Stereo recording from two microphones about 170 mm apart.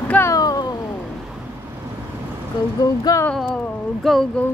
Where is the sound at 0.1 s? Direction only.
15° left (ahead or behind).